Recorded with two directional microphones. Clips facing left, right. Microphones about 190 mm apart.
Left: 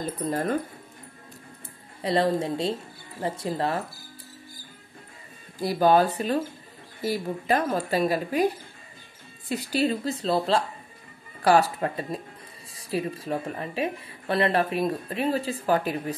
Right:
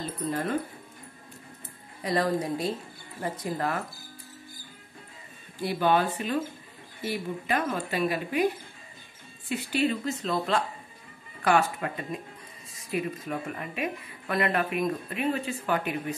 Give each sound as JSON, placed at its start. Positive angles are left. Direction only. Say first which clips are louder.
{"t": 0.3, "sound": "speech", "louder": "left 3 dB", "side_deg": 40}
{"t": 2.0, "sound": "a woman's voice", "louder": "left 3 dB", "side_deg": 25}
{"t": 5.6, "sound": "speech", "louder": "left 5 dB", "side_deg": 40}
{"t": 9.5, "sound": "speech", "louder": "left 2 dB", "side_deg": 35}